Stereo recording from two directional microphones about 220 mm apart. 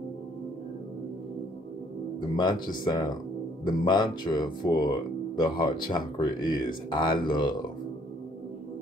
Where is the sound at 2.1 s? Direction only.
20° left (ahead or behind).